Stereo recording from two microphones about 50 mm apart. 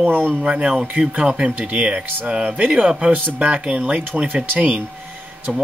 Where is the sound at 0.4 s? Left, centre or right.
Right.